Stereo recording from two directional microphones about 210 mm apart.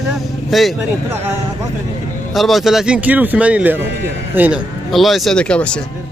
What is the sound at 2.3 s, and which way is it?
Speech, centre (ahead or behind).